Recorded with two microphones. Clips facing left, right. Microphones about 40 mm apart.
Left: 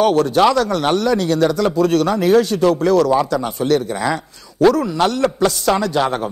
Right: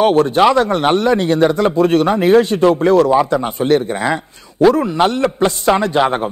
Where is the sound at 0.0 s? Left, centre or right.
Right.